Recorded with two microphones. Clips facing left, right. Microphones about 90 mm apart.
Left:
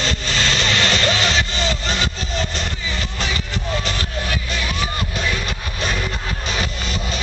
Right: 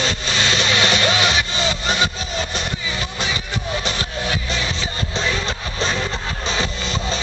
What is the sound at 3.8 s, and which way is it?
Music, 20° right (ahead or behind).